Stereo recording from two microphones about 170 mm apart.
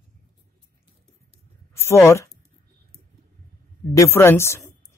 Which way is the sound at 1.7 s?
15° left (ahead or behind).